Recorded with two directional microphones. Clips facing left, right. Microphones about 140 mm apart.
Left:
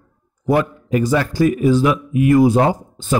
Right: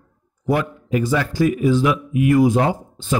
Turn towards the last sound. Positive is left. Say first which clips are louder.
# left 3 dB
turn(degrees=40)  # may be behind; listen again after turning